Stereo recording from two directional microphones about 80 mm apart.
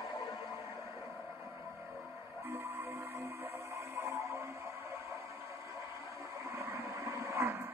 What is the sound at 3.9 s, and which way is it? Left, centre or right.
Music, right.